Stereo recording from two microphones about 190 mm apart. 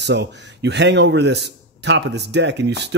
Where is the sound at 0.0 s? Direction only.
65° right (ahead or behind).